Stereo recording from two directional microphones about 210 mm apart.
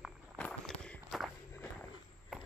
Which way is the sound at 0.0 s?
Centre (ahead or behind).